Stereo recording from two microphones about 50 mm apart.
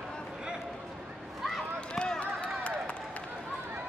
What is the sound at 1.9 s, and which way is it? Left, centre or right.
Run, centre.